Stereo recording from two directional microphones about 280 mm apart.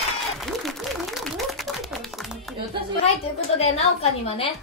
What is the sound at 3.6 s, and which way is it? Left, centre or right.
Speech, left.